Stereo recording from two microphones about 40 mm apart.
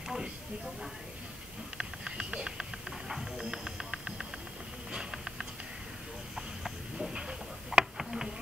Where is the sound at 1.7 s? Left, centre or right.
Centre.